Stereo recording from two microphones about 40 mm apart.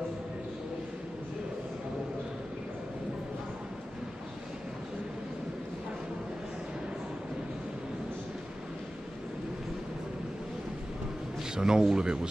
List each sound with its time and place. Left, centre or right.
11.5 s a man's voice: centre